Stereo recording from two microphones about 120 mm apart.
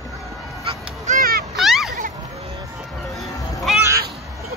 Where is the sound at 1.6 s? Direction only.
Centre (ahead or behind).